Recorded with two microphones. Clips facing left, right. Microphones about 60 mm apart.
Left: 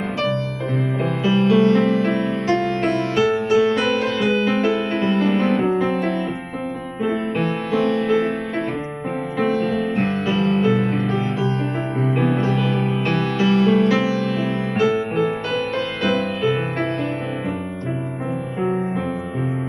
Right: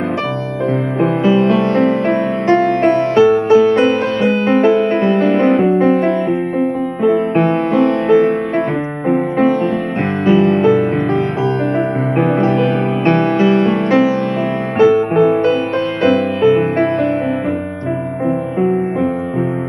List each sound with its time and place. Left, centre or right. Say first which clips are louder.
1.0 s music: right 7 dB; right
7.0 s music: right 9 dB; right
7.3 s music: right 8 dB; right
9.5 s music: right 5 dB; right
15.1 s music: right 10 dB; right
16.1 s music: right 9 dB; centre